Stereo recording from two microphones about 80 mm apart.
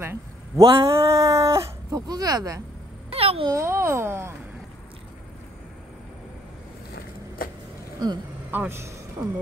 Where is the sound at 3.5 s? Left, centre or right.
Right.